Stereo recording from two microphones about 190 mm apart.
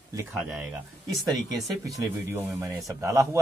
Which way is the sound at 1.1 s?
Centre (ahead or behind).